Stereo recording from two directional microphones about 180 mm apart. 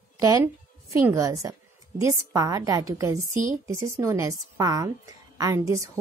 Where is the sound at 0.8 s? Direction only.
15° right (ahead or behind).